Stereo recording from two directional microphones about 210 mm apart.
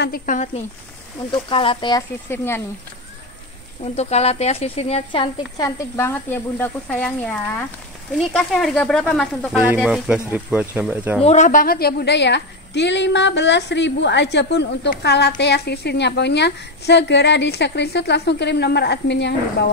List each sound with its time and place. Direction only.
0.0 s speech: 40° left (ahead or behind)
1.3 s speech: 25° left (ahead or behind)
3.8 s speech: 30° left (ahead or behind); by 11.1 s 10° right (ahead or behind)
11.2 s a woman's voice: 35° left (ahead or behind); by 19.3 s 55° left (ahead or behind)